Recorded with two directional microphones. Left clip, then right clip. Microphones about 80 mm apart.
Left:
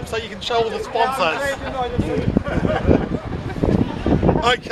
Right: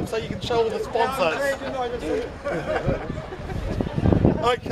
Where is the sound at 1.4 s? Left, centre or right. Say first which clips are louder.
Left 2 dB; right.